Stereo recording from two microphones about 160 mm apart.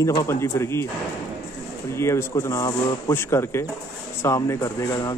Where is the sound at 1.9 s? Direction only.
15° left (ahead or behind).